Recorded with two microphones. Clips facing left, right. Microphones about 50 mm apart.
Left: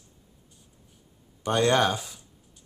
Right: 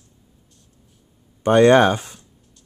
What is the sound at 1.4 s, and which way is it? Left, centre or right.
Speech, right.